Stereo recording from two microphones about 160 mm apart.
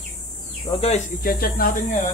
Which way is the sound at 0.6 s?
35° left (ahead or behind).